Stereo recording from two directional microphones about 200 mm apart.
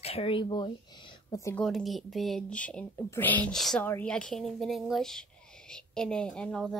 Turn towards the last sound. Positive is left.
turn(degrees=5)  # may be behind; listen again after turning